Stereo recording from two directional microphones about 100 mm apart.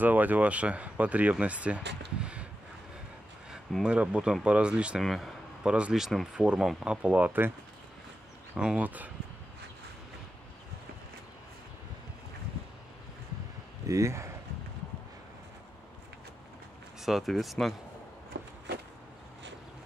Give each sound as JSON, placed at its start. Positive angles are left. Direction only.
{"t": 0.0, "sound": "speech", "side_deg": -15}
{"t": 3.8, "sound": "speech", "side_deg": -10}
{"t": 8.5, "sound": "speech", "side_deg": -10}
{"t": 13.8, "sound": "speech", "side_deg": -30}
{"t": 17.0, "sound": "speech", "side_deg": 0}